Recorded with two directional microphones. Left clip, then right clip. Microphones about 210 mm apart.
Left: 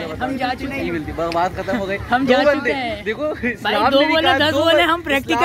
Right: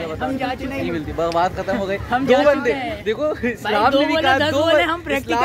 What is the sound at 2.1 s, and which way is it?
Speech, 50° left (ahead or behind).